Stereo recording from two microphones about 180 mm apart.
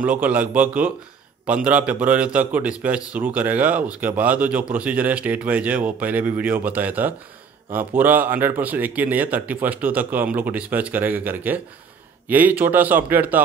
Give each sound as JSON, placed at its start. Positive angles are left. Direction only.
{"t": 0.0, "sound": "speech", "side_deg": -10}